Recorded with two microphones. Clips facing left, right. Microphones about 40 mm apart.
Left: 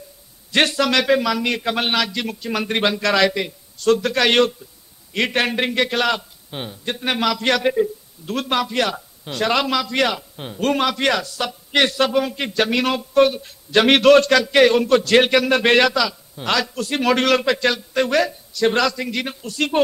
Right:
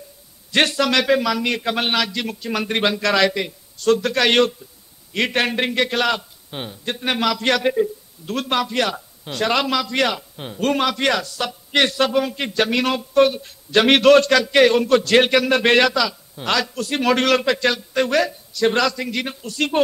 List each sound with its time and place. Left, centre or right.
0.5 s a man's voice: centre